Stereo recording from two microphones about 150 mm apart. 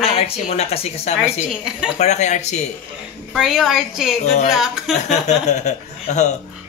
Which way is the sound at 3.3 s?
Centre (ahead or behind).